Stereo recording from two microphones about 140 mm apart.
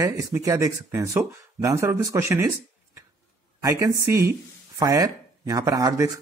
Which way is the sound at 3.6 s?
25° right (ahead or behind).